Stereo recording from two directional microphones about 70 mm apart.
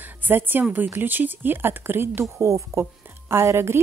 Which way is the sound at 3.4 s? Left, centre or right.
Right.